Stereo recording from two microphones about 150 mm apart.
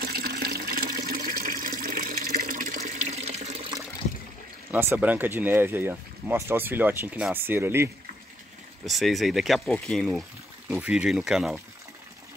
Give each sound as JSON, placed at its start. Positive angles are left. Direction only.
{"t": 0.0, "sound": "water", "side_deg": -90}
{"t": 4.6, "sound": "speech", "side_deg": -15}
{"t": 8.8, "sound": "speech", "side_deg": 0}